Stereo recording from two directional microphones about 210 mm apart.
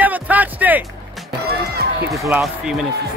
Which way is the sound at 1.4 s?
50° right (ahead or behind).